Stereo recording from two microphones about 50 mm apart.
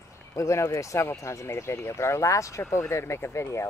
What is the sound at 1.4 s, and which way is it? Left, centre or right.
Speech, left.